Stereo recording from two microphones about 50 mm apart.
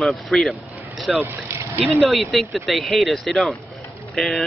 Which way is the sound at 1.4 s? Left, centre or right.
Right.